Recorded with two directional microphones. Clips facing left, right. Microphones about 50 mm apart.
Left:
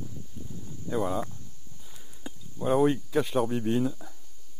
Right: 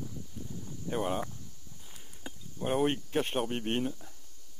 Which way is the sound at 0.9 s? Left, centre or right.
Right.